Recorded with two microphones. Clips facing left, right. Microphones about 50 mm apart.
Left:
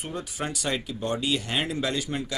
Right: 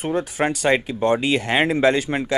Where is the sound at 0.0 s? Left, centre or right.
Right.